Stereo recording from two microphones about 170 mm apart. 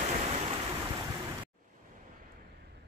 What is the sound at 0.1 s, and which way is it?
Waves, 40° right (ahead or behind).